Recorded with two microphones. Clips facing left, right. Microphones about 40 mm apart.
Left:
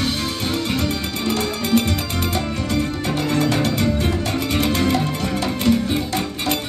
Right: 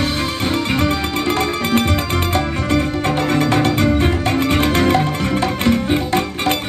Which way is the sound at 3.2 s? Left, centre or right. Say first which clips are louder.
Right 2 dB; right.